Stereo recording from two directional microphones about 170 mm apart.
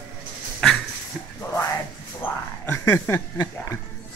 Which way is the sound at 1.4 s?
15° left (ahead or behind).